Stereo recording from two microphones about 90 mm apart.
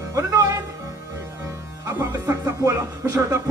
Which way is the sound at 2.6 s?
35° right (ahead or behind).